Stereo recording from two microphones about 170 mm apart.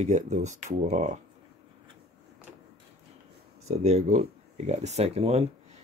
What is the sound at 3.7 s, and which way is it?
Speech, 40° right (ahead or behind).